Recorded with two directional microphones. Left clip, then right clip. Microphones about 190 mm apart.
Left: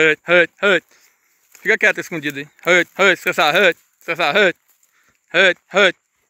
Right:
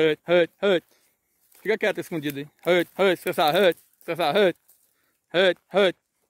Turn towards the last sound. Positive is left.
turn(degrees=-10)  # may be behind; listen again after turning